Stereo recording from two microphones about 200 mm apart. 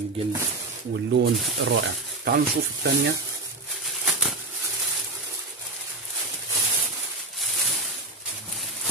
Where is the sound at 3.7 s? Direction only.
Centre (ahead or behind).